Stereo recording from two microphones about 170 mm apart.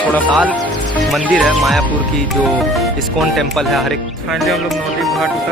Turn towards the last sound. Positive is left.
turn(degrees=0)  # may be behind; listen again after turning